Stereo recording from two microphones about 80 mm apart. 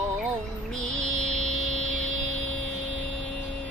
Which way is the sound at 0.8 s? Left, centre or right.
Centre.